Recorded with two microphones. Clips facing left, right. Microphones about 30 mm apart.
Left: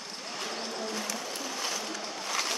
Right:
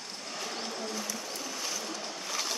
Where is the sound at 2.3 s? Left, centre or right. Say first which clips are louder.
Left 3 dB; left.